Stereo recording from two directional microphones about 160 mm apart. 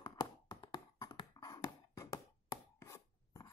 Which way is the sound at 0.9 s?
20° left (ahead or behind).